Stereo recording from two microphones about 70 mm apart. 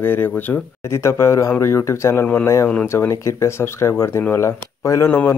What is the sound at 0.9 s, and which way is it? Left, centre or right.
Speech, left.